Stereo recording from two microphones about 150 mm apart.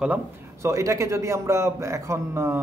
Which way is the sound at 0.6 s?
20° right (ahead or behind).